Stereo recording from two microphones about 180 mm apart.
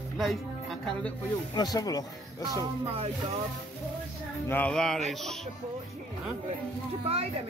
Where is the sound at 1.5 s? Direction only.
20° left (ahead or behind).